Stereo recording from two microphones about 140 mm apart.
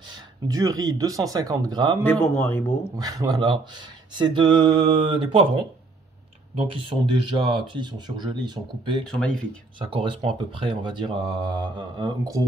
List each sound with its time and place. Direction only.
0.1 s speech: 25° right (ahead or behind)
2.0 s speech: 15° left (ahead or behind)
3.0 s speech: 25° right (ahead or behind)
6.9 s speech: 35° right (ahead or behind)
9.1 s speech: 5° left (ahead or behind)
9.8 s speech: 35° right (ahead or behind)